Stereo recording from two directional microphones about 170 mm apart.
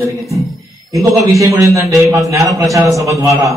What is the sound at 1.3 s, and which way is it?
Speech, 20° right (ahead or behind).